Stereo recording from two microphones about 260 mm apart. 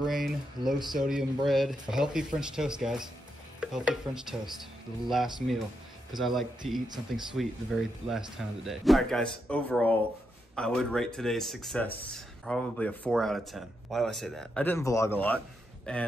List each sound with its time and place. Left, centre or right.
0.0 s speech: centre